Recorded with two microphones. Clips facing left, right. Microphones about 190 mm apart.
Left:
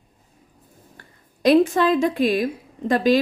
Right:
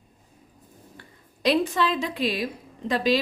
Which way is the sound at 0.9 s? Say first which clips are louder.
Right 2 dB; 50° left (ahead or behind).